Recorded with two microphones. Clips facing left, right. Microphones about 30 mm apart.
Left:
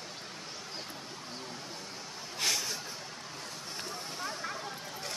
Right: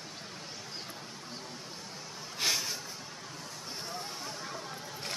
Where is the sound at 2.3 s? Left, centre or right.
Centre.